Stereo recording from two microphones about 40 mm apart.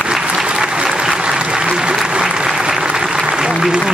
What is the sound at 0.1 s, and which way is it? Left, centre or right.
Applause, right.